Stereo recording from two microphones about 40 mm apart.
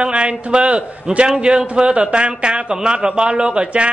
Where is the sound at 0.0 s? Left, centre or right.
Right.